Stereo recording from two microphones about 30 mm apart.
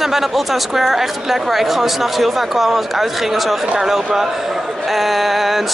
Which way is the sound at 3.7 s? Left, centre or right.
Centre.